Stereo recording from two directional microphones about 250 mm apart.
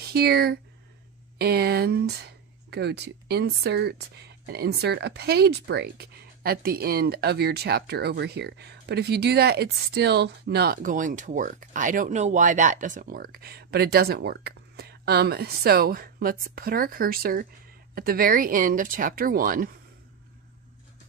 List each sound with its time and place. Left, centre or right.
0.1 s speech: right